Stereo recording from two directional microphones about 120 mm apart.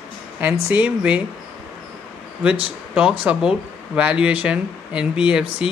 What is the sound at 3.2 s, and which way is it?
Speech, 10° right (ahead or behind).